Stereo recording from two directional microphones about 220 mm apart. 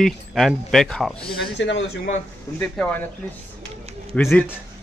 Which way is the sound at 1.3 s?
50° left (ahead or behind).